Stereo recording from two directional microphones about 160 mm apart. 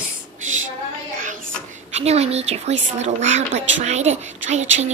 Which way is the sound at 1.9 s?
40° right (ahead or behind).